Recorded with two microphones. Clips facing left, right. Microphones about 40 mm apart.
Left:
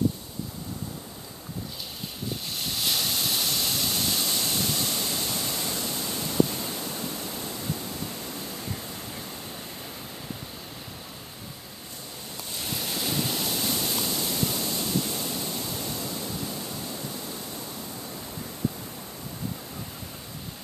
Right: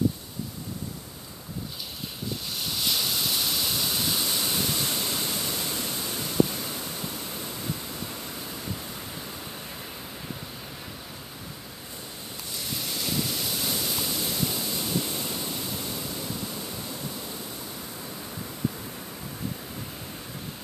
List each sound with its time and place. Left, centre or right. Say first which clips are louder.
2.5 s a sound: even; centre
5.8 s waves: even; centre
6.7 s waterfall: left 1 dB; centre
12.8 s vehicle: left 1 dB; centre